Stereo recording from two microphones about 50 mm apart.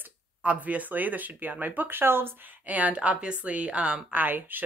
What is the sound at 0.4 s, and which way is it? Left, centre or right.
Speech, right.